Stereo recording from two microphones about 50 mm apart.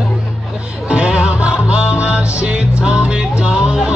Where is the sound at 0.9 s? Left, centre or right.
Right.